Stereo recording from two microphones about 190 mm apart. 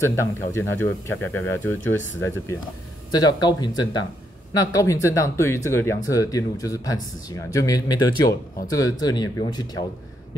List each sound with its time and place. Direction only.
0.0 s speech: 15° left (ahead or behind)